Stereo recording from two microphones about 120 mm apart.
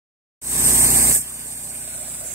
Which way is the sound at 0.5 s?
25° right (ahead or behind).